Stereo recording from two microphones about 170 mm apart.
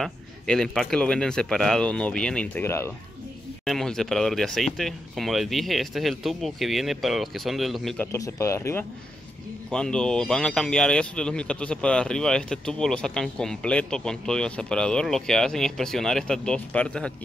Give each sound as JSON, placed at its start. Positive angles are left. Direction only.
{"t": 0.0, "sound": "speech", "side_deg": 0}
{"t": 3.6, "sound": "speech", "side_deg": 0}
{"t": 8.1, "sound": "speech", "side_deg": 15}